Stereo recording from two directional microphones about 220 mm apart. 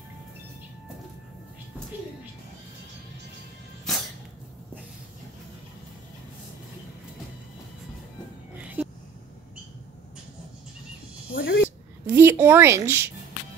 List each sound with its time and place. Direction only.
3.9 s a sound: centre (ahead or behind)
11.3 s speech: 45° left (ahead or behind)
12.1 s a woman's voice: 10° right (ahead or behind)